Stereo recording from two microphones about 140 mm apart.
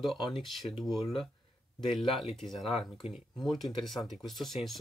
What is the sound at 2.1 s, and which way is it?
Speech, centre (ahead or behind).